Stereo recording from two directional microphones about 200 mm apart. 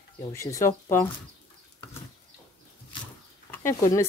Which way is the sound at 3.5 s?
15° left (ahead or behind).